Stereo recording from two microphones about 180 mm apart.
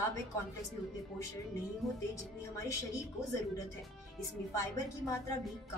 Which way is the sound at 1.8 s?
Centre (ahead or behind).